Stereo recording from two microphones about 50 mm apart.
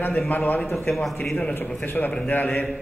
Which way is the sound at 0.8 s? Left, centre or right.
Centre.